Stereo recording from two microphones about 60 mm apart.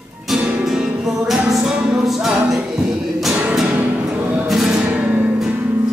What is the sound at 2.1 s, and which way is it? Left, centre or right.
Music, centre.